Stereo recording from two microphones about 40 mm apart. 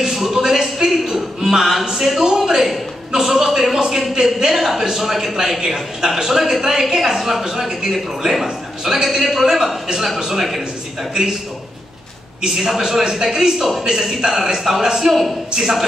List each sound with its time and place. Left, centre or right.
0.0 s a sound: centre
3.1 s a man's voice: centre
12.4 s a man's voice: centre